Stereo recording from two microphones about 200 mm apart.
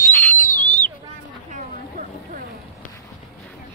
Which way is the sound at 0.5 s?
40° left (ahead or behind).